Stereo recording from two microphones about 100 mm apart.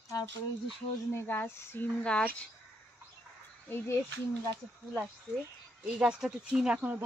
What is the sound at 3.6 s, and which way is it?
Speech, 25° left (ahead or behind).